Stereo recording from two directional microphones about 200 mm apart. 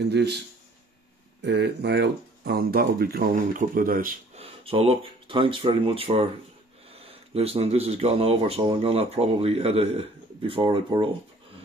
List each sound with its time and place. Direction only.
0.0 s a man's voice: 55° right (ahead or behind)
1.4 s speech: 60° right (ahead or behind)
4.4 s speech: 30° right (ahead or behind)